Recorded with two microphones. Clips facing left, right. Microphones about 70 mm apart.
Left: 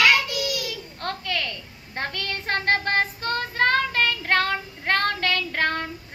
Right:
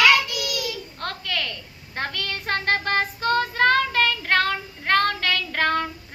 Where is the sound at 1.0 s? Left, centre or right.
Left.